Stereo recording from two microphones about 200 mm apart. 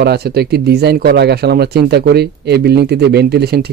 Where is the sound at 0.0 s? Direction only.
55° right (ahead or behind).